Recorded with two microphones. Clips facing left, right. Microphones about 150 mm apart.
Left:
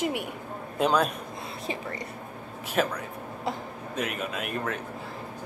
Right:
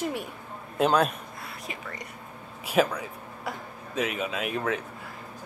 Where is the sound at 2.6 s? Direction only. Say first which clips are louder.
Right 3 dB; 5° right (ahead or behind).